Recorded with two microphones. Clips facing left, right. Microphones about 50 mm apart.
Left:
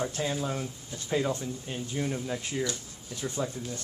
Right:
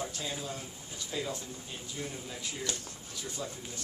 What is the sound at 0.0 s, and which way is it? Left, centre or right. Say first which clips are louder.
Speech: left 7 dB; left.